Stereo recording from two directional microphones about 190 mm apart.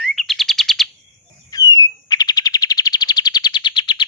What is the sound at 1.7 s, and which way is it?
Bird, 20° left (ahead or behind).